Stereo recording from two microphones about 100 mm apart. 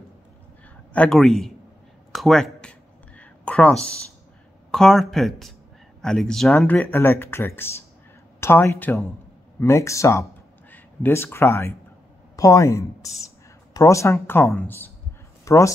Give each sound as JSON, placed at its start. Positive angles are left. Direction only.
{"t": 1.1, "sound": "speech", "side_deg": 0}
{"t": 2.1, "sound": "a sound", "side_deg": 0}
{"t": 4.6, "sound": "speech", "side_deg": 5}
{"t": 6.7, "sound": "speech", "side_deg": 20}
{"t": 10.7, "sound": "speech", "side_deg": 20}
{"t": 15.4, "sound": "speech", "side_deg": 30}